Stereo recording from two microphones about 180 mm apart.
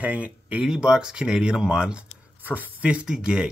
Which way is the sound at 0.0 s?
10° right (ahead or behind).